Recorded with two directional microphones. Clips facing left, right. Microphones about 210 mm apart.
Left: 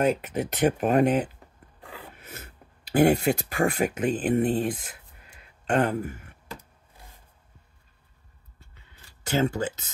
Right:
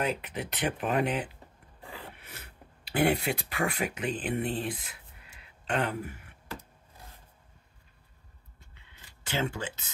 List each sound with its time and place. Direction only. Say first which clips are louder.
0.0 s speech: left 8 dB; 45° left (ahead or behind)
9.2 s speech: left 7 dB; 45° left (ahead or behind)